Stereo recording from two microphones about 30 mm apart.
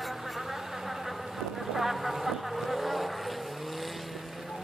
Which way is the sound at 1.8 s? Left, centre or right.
Centre.